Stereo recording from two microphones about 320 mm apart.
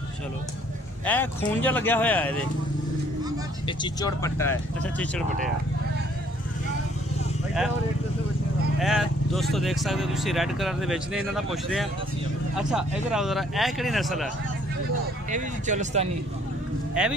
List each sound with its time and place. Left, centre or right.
1.0 s speech: centre
3.6 s speech: centre
8.7 s speech: centre
15.3 s speech: right
17.0 s speech: centre